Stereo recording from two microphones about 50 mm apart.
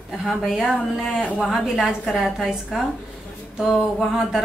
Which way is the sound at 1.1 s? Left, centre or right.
Left.